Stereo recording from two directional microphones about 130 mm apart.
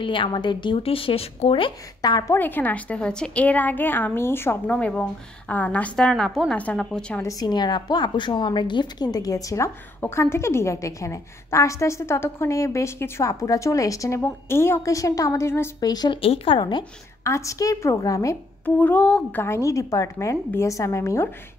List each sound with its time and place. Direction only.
0.0 s a woman's voice: 40° left (ahead or behind)
2.0 s speech: 30° left (ahead or behind)
2.3 s a woman's voice: 15° left (ahead or behind)
7.2 s a woman's voice: 25° left (ahead or behind)
15.9 s a woman's voice: 30° left (ahead or behind)
16.2 s a woman's voice: 45° left (ahead or behind)
17.2 s a woman's voice: 25° left (ahead or behind)
18.8 s a woman's voice: 10° left (ahead or behind)
19.4 s a woman's voice: 20° left (ahead or behind)